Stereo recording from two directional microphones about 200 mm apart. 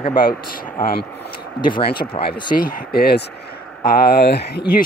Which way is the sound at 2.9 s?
50° left (ahead or behind).